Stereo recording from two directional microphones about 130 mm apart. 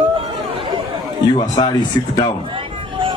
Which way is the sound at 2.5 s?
40° right (ahead or behind).